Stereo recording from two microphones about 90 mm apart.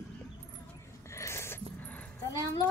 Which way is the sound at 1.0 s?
30° left (ahead or behind).